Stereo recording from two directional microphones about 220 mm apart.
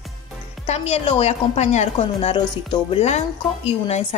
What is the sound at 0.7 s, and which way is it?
A woman's voice, 30° left (ahead or behind).